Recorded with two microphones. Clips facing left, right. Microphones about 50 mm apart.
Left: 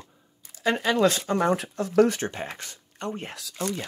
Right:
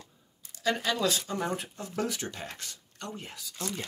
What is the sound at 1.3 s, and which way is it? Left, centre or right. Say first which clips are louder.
Speech: left 9 dB; left.